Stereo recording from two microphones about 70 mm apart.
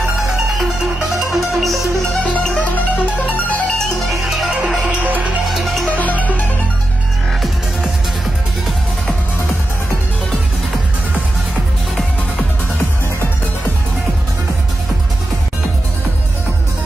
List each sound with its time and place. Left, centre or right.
1.3 s music: centre
2.3 s music: centre
3.7 s music: centre
4.5 s music: centre
5.5 s music: centre
5.9 s music: left